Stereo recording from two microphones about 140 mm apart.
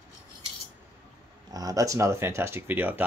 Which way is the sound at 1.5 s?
25° right (ahead or behind).